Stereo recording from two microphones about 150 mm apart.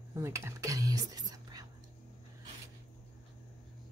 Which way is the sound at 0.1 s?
20° right (ahead or behind).